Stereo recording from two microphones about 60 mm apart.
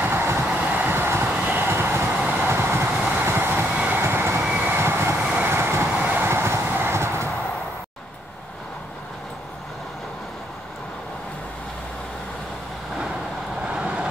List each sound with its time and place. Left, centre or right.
0.0 s train: right
0.5 s train: right
0.8 s vehicle: right
1.4 s train: right
1.7 s train: right
3.2 s vehicle: right
3.6 s train: centre
4.0 s vehicle: right
5.3 s train: right
5.9 s train: right
6.2 s train: right
12.9 s vehicle: centre